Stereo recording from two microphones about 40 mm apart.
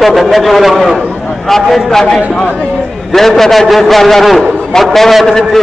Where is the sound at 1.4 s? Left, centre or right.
Centre.